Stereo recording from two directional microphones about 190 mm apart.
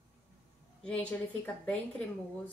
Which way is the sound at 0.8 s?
5° left (ahead or behind).